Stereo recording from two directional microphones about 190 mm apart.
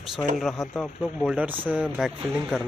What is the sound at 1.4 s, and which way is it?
Speech, 10° right (ahead or behind).